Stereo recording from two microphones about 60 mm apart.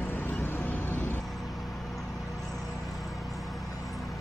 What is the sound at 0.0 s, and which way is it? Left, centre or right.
Vehicle, left.